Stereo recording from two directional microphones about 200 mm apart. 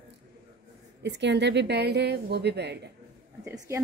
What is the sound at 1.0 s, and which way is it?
A woman's voice, 60° right (ahead or behind).